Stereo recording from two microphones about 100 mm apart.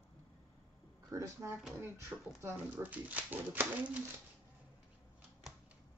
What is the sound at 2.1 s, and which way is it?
Speech, 20° right (ahead or behind).